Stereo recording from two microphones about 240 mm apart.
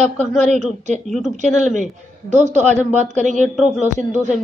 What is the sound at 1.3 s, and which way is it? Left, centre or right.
A woman's voice, right.